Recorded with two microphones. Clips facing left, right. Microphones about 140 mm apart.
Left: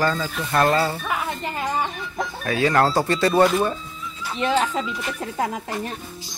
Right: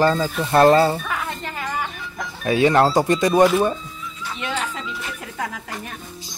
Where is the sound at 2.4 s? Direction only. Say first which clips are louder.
Right 4 dB; 20° right (ahead or behind).